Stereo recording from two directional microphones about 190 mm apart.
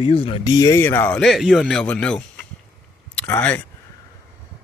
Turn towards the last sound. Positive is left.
turn(degrees=10)  # may be behind; listen again after turning